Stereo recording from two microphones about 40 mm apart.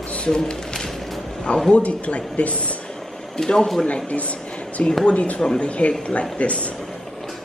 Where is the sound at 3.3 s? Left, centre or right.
Centre.